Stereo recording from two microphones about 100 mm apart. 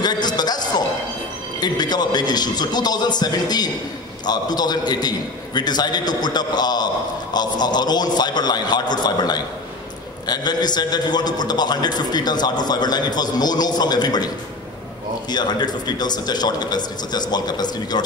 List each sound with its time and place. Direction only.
0.0 s a sound: 45° left (ahead or behind)
1.6 s a man's voice: 45° left (ahead or behind)
15.3 s a man's voice: 45° left (ahead or behind)